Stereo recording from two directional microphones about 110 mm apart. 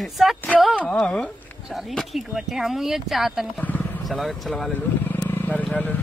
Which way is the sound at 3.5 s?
15° left (ahead or behind).